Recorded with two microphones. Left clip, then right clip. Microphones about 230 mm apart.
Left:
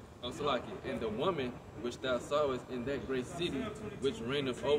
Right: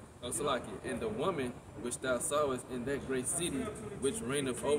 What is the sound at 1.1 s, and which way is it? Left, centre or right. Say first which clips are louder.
Speech: left 2 dB; centre.